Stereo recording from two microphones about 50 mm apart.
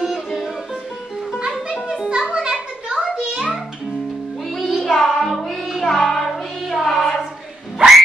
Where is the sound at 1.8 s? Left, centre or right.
Centre.